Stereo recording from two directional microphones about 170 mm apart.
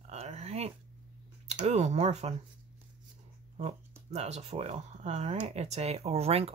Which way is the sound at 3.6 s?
40° right (ahead or behind).